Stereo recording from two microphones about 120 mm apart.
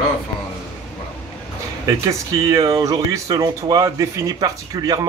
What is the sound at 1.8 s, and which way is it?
Speech, 30° right (ahead or behind).